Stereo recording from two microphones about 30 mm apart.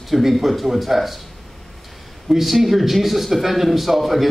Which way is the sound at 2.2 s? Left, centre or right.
Centre.